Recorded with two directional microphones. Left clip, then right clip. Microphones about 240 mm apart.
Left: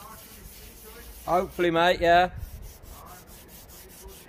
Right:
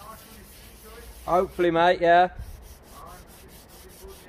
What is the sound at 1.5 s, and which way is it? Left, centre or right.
Speech, left.